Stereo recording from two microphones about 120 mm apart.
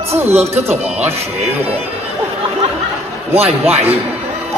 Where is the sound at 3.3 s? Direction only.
60° right (ahead or behind).